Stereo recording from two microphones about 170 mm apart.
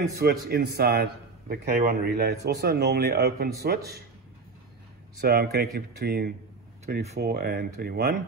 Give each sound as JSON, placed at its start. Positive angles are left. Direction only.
{"t": 0.2, "sound": "a man's voice", "side_deg": -70}
{"t": 5.2, "sound": "a man's voice", "side_deg": -65}